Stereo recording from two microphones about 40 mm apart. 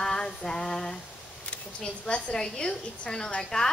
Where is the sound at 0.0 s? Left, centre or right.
Centre.